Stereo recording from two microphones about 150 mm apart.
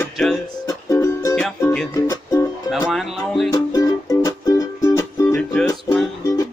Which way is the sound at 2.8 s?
Centre (ahead or behind).